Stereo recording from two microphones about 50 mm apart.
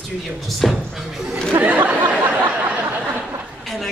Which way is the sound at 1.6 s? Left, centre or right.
Right.